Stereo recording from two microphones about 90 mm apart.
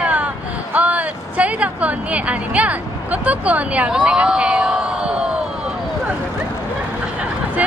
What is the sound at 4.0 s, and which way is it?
Speech, 15° right (ahead or behind).